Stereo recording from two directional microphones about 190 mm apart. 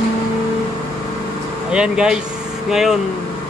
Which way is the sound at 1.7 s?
5° right (ahead or behind).